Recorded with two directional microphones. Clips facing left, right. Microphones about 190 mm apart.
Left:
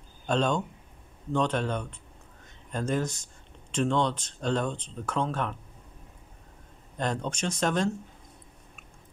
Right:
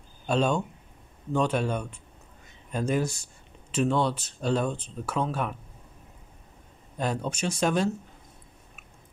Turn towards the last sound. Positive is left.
turn(degrees=-10)  # may be behind; listen again after turning